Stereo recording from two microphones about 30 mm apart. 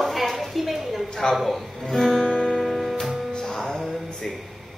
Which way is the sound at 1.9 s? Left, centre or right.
Centre.